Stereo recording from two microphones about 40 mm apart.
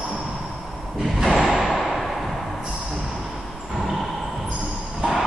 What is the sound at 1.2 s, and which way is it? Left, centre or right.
Thump, centre.